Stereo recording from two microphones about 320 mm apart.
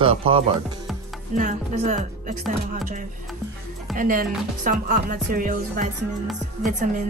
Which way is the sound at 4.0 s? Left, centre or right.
Right.